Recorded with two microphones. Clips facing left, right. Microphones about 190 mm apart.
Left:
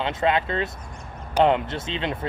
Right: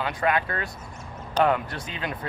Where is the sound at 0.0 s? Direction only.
25° left (ahead or behind).